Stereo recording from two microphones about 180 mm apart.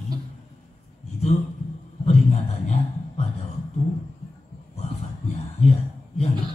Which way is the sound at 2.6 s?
40° left (ahead or behind).